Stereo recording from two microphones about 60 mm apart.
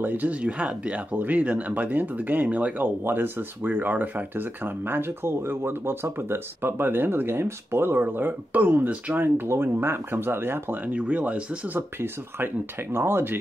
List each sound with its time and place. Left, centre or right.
0.0 s speech: right
10.8 s speech: right
12.9 s speech: right